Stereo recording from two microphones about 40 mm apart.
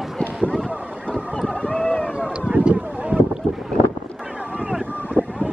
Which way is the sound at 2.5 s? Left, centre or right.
Right.